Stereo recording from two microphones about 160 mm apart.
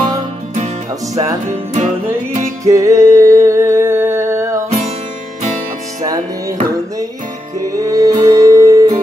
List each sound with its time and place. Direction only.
0.0 s music: 50° right (ahead or behind)
2.6 s music: 20° right (ahead or behind)
7.7 s music: 20° right (ahead or behind)